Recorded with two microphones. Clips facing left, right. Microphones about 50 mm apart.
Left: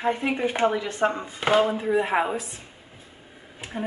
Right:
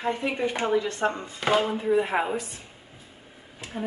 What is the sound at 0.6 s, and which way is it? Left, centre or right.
Speech, left.